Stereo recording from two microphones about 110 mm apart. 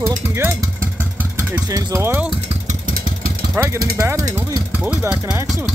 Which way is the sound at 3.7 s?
25° right (ahead or behind).